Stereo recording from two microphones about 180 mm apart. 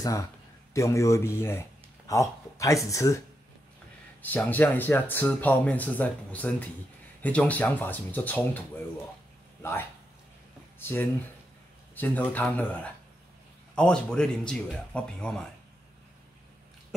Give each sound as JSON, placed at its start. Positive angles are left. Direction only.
{"t": 0.0, "sound": "speech", "side_deg": 20}
{"t": 4.2, "sound": "speech", "side_deg": 10}
{"t": 9.6, "sound": "speech", "side_deg": 15}
{"t": 13.7, "sound": "speech", "side_deg": 5}